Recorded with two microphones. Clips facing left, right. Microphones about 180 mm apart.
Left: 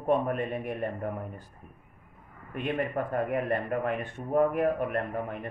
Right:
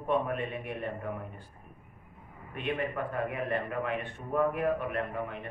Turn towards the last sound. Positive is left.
turn(degrees=40)  # may be behind; listen again after turning